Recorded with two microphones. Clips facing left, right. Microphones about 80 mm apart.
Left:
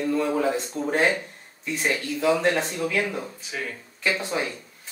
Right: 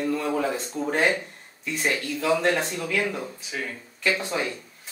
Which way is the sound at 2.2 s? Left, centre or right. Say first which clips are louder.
Left 1 dB; left.